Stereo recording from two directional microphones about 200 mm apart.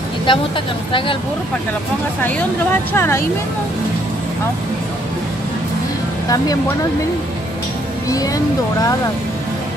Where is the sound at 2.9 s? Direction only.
10° left (ahead or behind).